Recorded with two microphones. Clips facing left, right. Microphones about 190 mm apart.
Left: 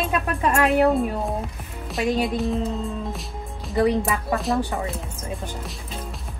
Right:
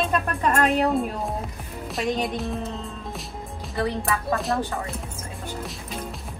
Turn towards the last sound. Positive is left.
turn(degrees=0)  # may be behind; listen again after turning